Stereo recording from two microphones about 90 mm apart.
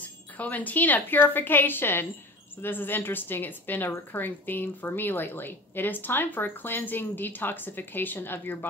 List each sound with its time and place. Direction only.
0.4 s a woman's voice: 20° left (ahead or behind)